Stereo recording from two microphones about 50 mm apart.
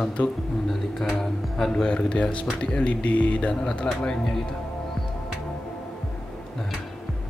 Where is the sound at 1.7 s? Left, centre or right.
Centre.